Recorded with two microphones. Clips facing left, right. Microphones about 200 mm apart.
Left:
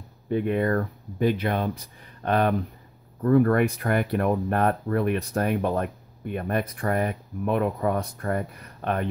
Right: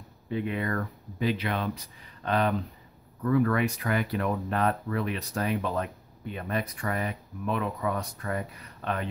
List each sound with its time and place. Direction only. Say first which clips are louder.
0.3 s speech: left 7 dB; 50° left (ahead or behind)
3.2 s speech: left 5 dB; 40° left (ahead or behind)